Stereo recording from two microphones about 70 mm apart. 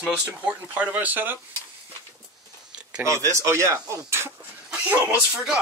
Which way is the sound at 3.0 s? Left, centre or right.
Right.